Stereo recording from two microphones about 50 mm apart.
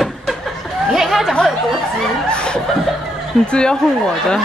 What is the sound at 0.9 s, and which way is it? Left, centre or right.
Speech, centre.